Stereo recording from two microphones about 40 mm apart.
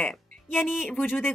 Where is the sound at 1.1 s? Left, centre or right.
Left.